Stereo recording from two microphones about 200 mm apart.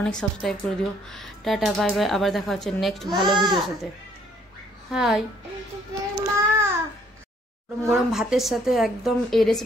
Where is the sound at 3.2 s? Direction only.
20° right (ahead or behind).